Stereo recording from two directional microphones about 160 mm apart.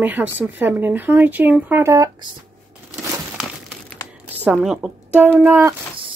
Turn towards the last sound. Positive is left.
turn(degrees=-15)  # may be behind; listen again after turning